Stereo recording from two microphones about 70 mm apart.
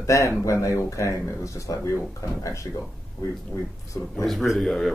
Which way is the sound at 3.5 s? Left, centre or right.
Left.